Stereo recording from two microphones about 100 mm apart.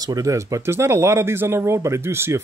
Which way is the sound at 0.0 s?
35° right (ahead or behind).